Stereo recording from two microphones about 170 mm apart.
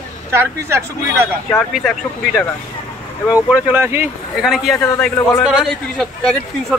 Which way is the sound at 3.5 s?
15° right (ahead or behind).